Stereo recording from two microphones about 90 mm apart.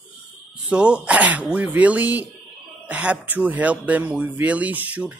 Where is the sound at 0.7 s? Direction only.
10° right (ahead or behind).